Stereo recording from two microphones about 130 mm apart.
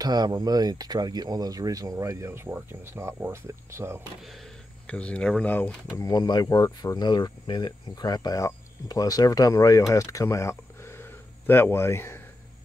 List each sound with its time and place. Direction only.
0.0 s speech: 30° right (ahead or behind)
4.8 s speech: 10° left (ahead or behind)
5.9 s speech: 30° left (ahead or behind)